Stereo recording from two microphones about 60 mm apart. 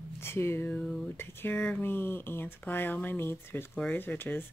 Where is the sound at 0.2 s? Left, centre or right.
Left.